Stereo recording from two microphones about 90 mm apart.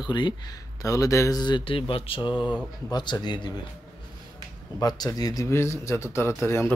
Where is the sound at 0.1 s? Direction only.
55° left (ahead or behind).